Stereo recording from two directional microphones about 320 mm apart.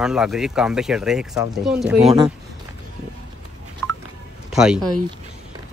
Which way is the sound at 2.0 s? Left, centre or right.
Centre.